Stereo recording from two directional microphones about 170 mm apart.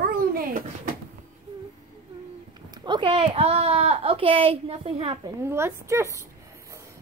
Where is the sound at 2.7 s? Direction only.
25° right (ahead or behind).